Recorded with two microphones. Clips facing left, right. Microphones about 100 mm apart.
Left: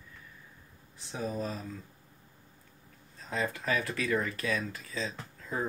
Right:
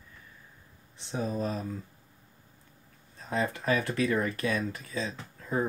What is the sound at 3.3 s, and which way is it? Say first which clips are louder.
Speech: right 3 dB; 25° right (ahead or behind).